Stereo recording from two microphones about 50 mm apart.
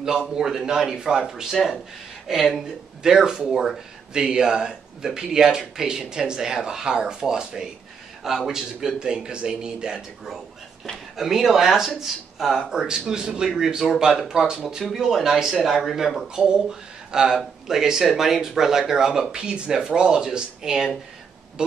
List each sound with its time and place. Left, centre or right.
0.0 s speech: centre
11.1 s speech: centre
16.3 s speech: centre